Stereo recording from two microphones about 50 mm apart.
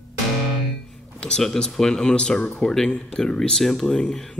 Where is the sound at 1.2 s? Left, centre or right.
Centre.